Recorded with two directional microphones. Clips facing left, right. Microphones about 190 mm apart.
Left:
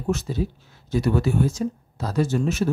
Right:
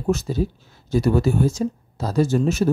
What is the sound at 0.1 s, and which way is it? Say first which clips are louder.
Speech: right 3 dB; 40° right (ahead or behind).